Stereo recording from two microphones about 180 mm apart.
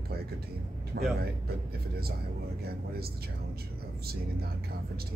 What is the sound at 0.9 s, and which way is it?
Speech, 65° right (ahead or behind).